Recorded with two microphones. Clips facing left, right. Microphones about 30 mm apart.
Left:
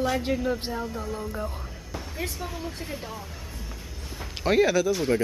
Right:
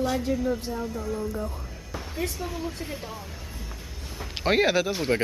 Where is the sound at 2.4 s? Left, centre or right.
Centre.